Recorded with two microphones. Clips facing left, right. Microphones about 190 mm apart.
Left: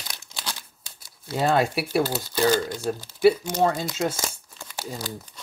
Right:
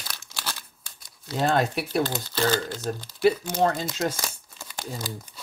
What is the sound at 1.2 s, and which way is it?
Speech, 10° left (ahead or behind).